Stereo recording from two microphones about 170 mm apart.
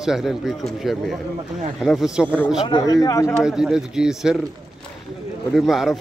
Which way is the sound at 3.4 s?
5° right (ahead or behind).